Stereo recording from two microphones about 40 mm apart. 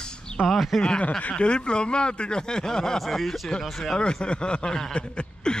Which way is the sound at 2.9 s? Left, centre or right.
Centre.